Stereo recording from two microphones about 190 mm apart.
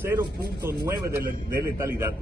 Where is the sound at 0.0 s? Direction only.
10° right (ahead or behind).